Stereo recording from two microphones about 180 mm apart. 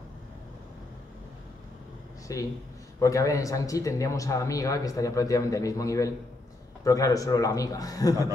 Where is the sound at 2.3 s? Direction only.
20° left (ahead or behind).